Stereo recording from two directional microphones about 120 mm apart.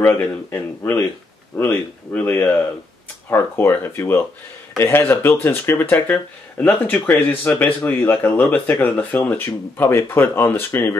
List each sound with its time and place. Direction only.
0.0 s speech: 15° left (ahead or behind)